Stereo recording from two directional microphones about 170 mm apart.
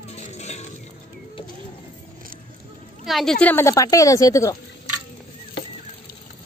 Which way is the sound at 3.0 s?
Centre (ahead or behind).